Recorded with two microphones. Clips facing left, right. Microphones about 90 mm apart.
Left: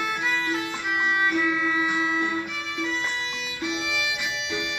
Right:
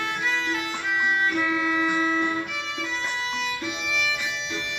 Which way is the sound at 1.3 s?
Centre (ahead or behind).